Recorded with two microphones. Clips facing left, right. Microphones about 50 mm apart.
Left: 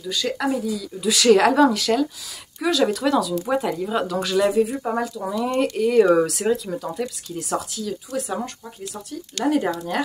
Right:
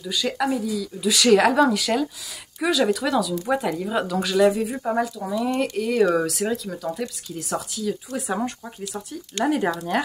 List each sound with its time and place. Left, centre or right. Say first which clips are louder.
0.0 s speech: even; centre
8.3 s speech: right 2 dB; centre